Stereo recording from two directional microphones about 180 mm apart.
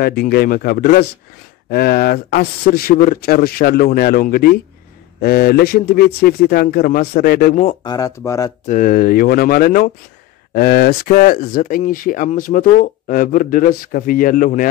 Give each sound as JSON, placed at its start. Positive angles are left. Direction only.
{"t": 0.0, "sound": "a man's voice", "side_deg": 60}
{"t": 7.8, "sound": "speech", "side_deg": 20}
{"t": 8.6, "sound": "speech", "side_deg": 45}